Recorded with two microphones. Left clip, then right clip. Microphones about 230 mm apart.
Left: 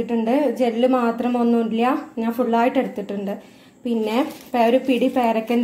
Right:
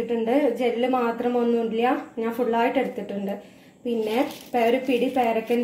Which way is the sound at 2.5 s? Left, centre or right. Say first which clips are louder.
Left 4 dB; left.